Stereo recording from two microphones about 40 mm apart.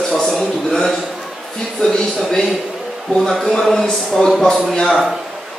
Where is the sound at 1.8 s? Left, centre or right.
Centre.